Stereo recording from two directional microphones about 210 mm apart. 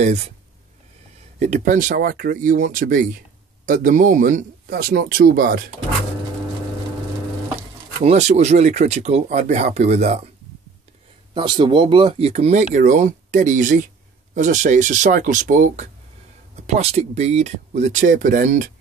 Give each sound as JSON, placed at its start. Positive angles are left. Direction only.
{"t": 1.4, "sound": "a man's voice", "side_deg": -35}
{"t": 8.0, "sound": "speech", "side_deg": -35}
{"t": 11.3, "sound": "speech", "side_deg": -20}